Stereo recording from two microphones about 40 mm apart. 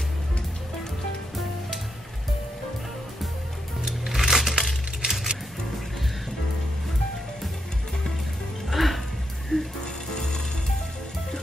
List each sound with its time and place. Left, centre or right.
3.8 s music: centre
8.6 s music: centre
10.1 s frying: centre